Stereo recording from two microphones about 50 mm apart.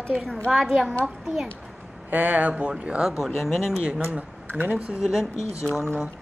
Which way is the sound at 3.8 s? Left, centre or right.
Right.